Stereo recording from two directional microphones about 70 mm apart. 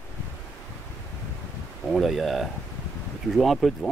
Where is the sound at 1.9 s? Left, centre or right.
Centre.